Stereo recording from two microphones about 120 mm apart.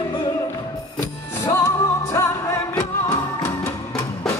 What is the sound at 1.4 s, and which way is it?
Music, 25° left (ahead or behind).